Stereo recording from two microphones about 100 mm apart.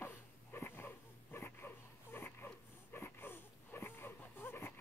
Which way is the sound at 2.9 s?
20° left (ahead or behind).